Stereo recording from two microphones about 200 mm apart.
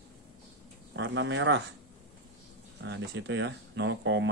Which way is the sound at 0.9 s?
65° right (ahead or behind).